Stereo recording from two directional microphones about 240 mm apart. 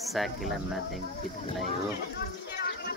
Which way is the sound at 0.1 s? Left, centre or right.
Centre.